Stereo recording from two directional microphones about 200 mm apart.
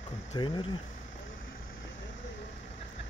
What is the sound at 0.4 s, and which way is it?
Speech, 20° left (ahead or behind).